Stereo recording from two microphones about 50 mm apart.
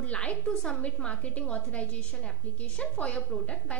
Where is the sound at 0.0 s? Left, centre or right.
Left.